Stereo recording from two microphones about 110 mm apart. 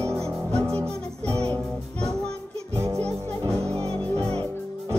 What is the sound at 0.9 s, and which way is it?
Music, 10° left (ahead or behind).